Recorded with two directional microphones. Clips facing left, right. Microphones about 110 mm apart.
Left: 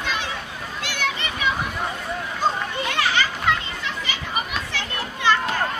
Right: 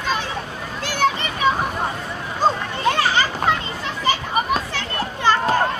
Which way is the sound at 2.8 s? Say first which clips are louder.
Right 5 dB; 35° right (ahead or behind).